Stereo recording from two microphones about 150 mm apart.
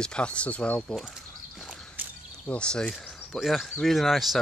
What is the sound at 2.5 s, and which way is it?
Speech, 5° left (ahead or behind).